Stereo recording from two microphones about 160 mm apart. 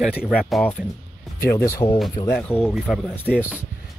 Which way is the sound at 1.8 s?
30° left (ahead or behind).